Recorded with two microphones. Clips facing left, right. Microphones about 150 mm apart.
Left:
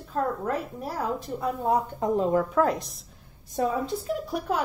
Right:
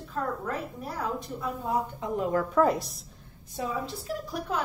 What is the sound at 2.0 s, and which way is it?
Speech, 45° left (ahead or behind).